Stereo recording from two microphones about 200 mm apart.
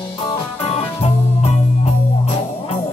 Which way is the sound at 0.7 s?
30° left (ahead or behind).